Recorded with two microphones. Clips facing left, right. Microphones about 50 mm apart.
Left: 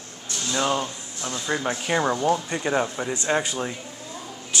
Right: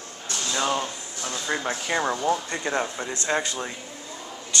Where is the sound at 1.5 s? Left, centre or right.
Centre.